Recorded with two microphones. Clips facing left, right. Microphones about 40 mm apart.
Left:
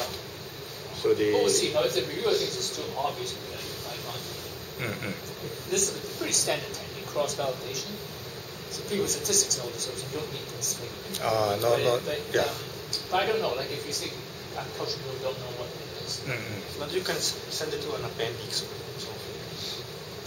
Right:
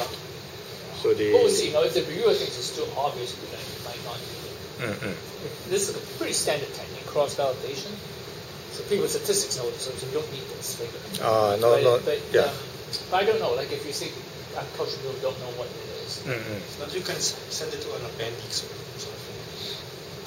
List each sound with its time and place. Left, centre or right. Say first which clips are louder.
1.0 s speech: right 4 dB; centre
2.8 s speech: right 5 dB; centre
4.7 s speech: right 3 dB; centre
5.7 s speech: right 3 dB; right
9.0 s speech: right 4 dB; right
10.1 s speech: right 4 dB; centre
16.8 s a man's voice: left 2 dB; centre